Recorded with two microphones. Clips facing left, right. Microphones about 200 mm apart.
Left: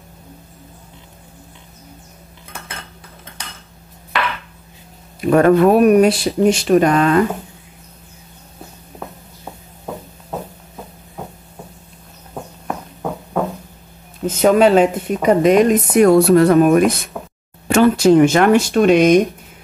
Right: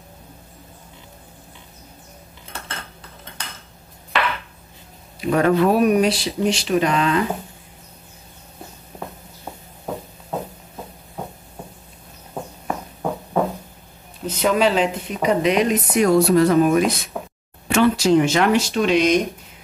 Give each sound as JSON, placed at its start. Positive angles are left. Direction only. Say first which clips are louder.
{"t": 5.2, "sound": "speech", "louder": "left 6 dB", "side_deg": 50}
{"t": 12.6, "sound": "a sound", "louder": "left 1 dB", "side_deg": 0}
{"t": 14.2, "sound": "speech", "louder": "left 6 dB", "side_deg": 45}